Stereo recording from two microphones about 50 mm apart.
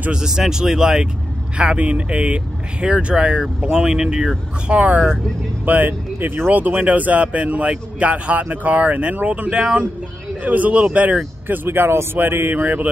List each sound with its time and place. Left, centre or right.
0.1 s speech: centre
10.4 s speech: right
11.4 s speech: right